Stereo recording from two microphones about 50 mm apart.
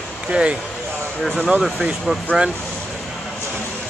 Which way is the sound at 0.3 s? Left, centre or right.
Right.